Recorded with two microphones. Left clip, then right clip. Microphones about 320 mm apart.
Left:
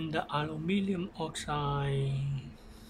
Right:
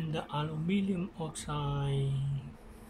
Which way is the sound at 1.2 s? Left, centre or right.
Left.